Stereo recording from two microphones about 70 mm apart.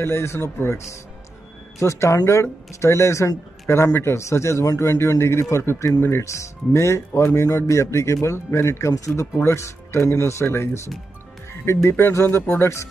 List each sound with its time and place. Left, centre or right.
0.0 s speech: left